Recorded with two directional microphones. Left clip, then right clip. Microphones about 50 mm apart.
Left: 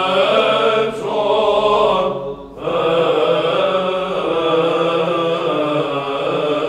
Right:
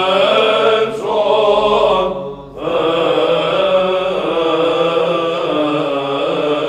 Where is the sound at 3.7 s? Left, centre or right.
Right.